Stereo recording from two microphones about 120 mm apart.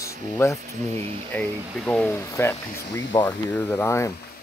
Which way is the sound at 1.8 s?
10° left (ahead or behind).